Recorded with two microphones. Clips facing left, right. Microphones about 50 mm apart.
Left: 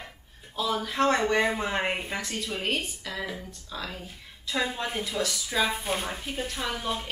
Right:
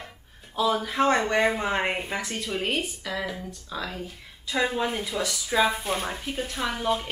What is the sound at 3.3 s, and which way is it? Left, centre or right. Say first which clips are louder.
A woman's voice: right 3 dB; centre.